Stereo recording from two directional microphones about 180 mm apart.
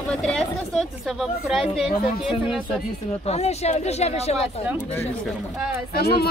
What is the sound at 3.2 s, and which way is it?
Speech, 35° left (ahead or behind).